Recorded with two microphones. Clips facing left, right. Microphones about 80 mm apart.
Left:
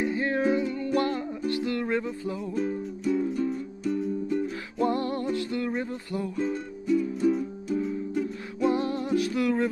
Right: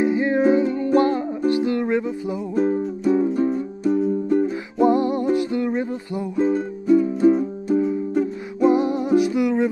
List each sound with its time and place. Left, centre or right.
0.0 s music: centre
2.5 s music: right
4.7 s music: centre
6.4 s music: right
8.6 s music: centre